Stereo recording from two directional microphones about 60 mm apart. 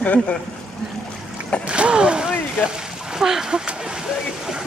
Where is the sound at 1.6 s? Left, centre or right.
Centre.